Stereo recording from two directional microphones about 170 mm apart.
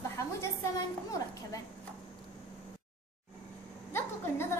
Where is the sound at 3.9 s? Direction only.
15° left (ahead or behind).